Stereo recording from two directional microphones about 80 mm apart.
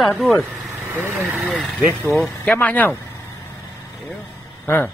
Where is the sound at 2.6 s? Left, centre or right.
Left.